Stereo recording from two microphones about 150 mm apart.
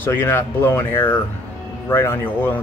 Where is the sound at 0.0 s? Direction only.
15° left (ahead or behind).